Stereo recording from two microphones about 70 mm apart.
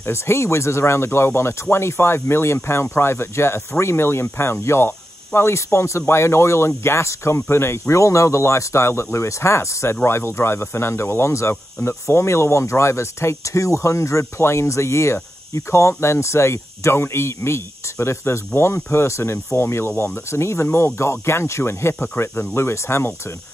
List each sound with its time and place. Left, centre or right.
0.0 s speech: left